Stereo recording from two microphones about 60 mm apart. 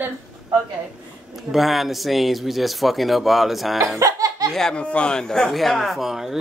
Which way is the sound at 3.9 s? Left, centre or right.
Right.